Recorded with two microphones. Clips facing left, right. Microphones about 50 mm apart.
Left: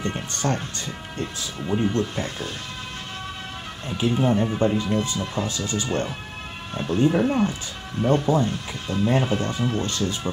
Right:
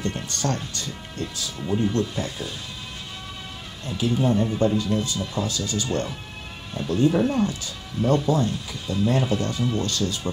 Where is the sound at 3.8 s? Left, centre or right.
Left.